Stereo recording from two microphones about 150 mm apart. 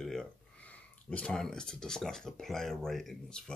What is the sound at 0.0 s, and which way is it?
Speech, 5° left (ahead or behind).